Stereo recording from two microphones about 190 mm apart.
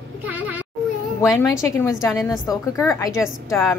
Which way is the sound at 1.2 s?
Centre (ahead or behind).